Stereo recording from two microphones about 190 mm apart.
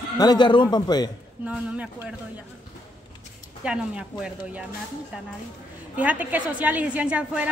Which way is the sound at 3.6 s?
5° right (ahead or behind).